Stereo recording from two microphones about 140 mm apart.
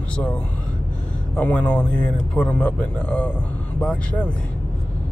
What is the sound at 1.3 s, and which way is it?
Speech, 10° left (ahead or behind).